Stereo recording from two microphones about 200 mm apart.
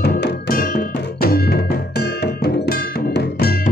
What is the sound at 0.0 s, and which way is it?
Music, 50° left (ahead or behind).